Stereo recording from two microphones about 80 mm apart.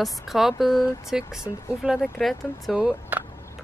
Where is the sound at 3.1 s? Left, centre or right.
Right.